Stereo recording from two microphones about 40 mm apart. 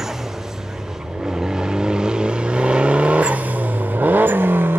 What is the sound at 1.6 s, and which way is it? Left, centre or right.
Vehicle, centre.